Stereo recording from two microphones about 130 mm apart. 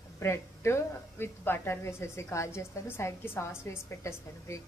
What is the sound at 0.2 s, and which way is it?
A woman's voice, 20° left (ahead or behind).